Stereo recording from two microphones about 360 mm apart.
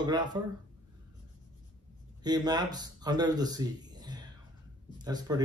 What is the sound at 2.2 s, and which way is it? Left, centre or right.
Speech, centre.